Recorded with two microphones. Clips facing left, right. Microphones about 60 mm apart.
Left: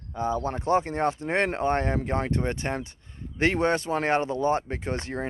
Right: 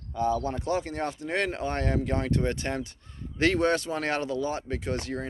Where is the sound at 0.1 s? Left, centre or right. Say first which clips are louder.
Right 1 dB; left.